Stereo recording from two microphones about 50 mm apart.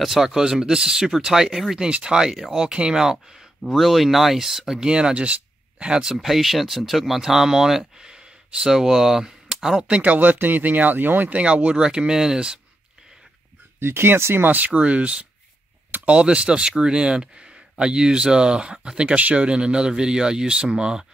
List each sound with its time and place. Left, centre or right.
0.0 s speech: centre
1.9 s speech: centre
4.8 s speech: centre
6.2 s speech: centre
9.8 s speech: right; by 12.5 s centre
13.7 s speech: right
14.7 s speech: right